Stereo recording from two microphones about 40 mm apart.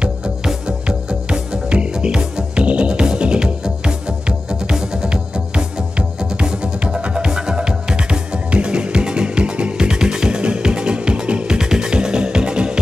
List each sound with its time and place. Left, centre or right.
0.7 s music: right